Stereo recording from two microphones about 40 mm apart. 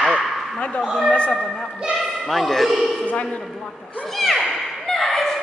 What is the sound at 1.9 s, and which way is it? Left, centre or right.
A man's voice, centre.